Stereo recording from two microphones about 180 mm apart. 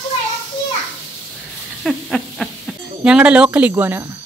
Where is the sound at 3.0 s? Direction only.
5° right (ahead or behind).